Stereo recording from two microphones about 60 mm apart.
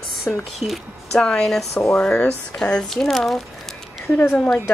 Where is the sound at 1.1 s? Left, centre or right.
Centre.